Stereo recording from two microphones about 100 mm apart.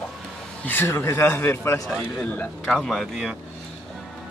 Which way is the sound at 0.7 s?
20° left (ahead or behind).